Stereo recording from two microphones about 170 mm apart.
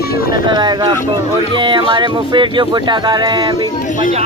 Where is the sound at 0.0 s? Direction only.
60° left (ahead or behind).